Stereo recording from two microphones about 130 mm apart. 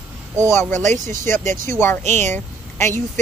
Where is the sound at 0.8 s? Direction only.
70° right (ahead or behind).